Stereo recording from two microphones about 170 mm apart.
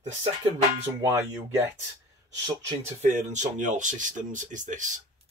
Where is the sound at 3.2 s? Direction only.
45° right (ahead or behind).